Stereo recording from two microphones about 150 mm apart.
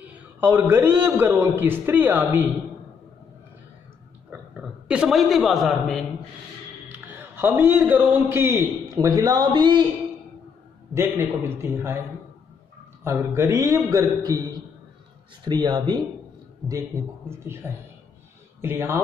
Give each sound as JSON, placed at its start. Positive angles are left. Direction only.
{"t": 0.0, "sound": "a man's voice", "side_deg": -10}
{"t": 4.3, "sound": "a man's voice", "side_deg": -10}
{"t": 6.9, "sound": "a man's voice", "side_deg": -15}
{"t": 11.0, "sound": "a man's voice", "side_deg": -15}
{"t": 13.0, "sound": "a man's voice", "side_deg": -15}
{"t": 15.4, "sound": "a man's voice", "side_deg": -30}
{"t": 17.6, "sound": "a man's voice", "side_deg": -15}